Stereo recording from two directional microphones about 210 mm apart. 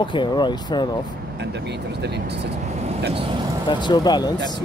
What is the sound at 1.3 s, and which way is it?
Speech, 55° right (ahead or behind).